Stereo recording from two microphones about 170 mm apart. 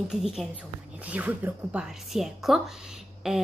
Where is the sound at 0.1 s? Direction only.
Centre (ahead or behind).